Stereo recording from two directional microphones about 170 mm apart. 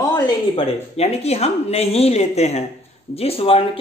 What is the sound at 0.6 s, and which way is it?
Speech, 35° left (ahead or behind).